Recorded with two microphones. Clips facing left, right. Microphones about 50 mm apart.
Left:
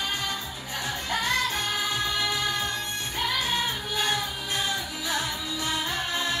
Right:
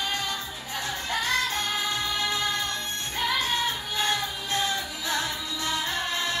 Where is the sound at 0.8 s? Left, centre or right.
Left.